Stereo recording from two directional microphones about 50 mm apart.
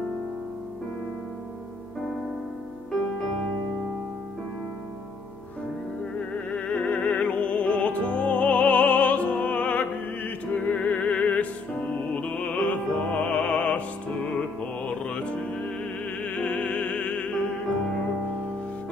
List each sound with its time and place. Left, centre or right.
2.9 s music: centre
6.1 s opera: left
10.2 s music: left